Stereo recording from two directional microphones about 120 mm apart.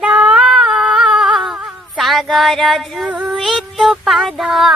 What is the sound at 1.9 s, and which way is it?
Female singing, centre (ahead or behind).